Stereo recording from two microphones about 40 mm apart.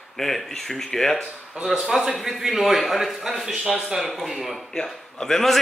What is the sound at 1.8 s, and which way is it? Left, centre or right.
A man's voice, centre.